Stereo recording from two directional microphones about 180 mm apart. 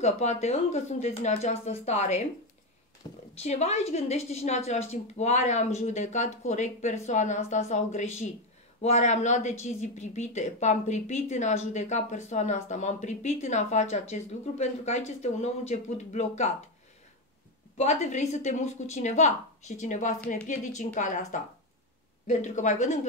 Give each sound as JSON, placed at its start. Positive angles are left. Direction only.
{"t": 0.0, "sound": "speech", "side_deg": 40}
{"t": 3.0, "sound": "speech", "side_deg": 25}
{"t": 3.3, "sound": "speech", "side_deg": 35}
{"t": 17.7, "sound": "speech", "side_deg": 40}